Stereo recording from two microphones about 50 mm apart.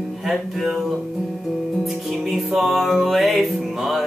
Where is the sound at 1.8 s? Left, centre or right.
Centre.